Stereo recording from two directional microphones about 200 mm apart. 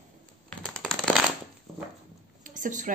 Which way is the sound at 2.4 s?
40° right (ahead or behind).